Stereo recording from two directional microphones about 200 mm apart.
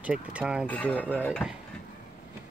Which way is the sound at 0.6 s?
5° left (ahead or behind).